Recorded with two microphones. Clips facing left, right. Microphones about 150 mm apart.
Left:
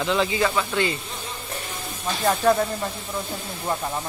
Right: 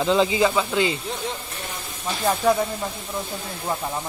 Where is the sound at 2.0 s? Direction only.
10° right (ahead or behind).